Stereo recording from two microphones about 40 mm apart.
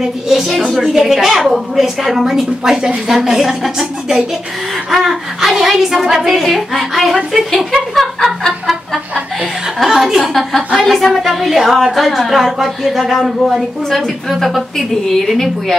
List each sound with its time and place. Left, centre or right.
0.3 s a woman's voice: centre
9.4 s a woman's voice: centre